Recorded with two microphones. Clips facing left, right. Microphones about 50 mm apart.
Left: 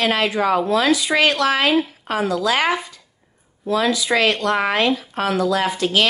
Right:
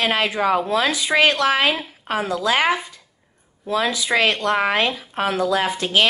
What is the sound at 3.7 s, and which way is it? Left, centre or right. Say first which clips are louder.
A woman's voice: left 2 dB; right.